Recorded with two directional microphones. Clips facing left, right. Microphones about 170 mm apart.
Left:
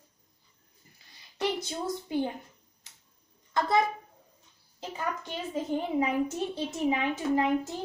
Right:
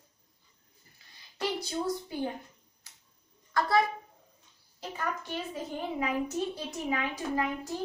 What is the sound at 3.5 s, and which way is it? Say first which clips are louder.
Speech: even; 20° left (ahead or behind).